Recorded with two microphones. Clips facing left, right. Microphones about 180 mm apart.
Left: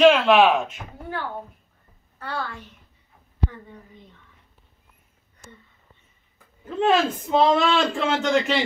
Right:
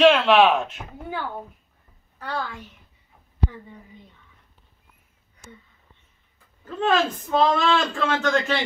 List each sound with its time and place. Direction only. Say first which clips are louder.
0.0 s speech: left 1 dB; 5° left (ahead or behind)
0.7 s a woman's voice: even; 5° right (ahead or behind)
6.6 s a woman's voice: left 2 dB; 20° left (ahead or behind)